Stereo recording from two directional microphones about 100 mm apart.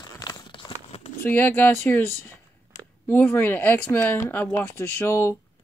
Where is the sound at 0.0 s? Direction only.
40° left (ahead or behind); by 1.1 s 75° left (ahead or behind).